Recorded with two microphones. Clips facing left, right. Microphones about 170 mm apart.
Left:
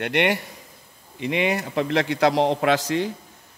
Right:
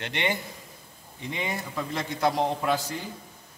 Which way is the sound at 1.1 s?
80° left.